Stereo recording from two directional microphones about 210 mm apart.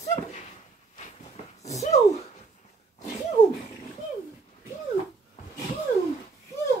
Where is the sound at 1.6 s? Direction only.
30° left (ahead or behind).